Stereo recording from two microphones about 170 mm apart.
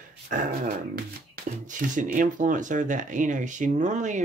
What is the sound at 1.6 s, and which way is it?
Speech, 50° right (ahead or behind).